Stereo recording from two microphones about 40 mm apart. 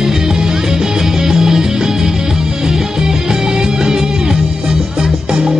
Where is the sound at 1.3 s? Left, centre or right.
Centre.